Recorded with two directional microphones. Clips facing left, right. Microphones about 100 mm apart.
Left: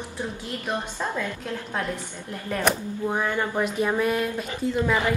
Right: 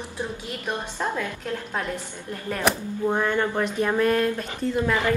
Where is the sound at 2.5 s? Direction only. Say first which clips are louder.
Even; 5° left (ahead or behind).